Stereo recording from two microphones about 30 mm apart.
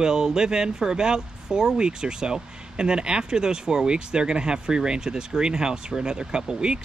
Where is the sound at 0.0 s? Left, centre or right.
Centre.